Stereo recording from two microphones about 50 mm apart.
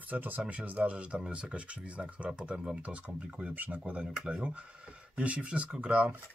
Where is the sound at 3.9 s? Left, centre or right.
Right.